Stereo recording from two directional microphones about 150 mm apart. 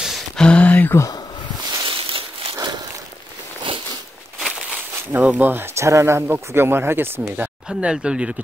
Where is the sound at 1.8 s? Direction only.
35° right (ahead or behind).